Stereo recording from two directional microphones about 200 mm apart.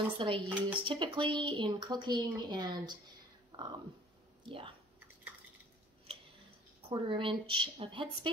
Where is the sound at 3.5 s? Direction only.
25° right (ahead or behind).